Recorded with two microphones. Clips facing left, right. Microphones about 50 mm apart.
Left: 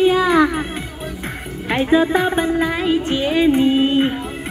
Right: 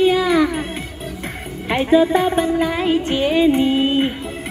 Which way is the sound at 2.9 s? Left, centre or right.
Centre.